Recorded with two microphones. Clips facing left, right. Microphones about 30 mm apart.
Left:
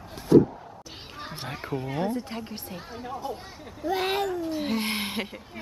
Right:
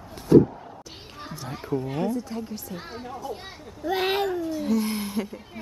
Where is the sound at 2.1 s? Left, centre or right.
Left.